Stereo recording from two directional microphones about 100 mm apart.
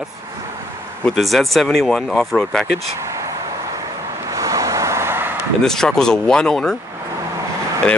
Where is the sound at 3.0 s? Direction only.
30° right (ahead or behind).